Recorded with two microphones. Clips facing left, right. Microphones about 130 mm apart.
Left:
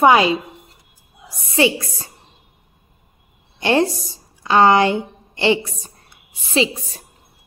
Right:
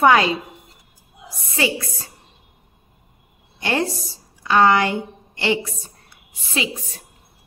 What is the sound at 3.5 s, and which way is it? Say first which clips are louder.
A woman's voice: left 5 dB; 25° left (ahead or behind).